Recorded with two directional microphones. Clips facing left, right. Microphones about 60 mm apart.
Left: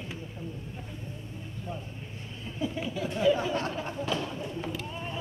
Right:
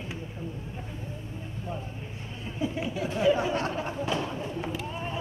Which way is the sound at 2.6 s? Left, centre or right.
Right.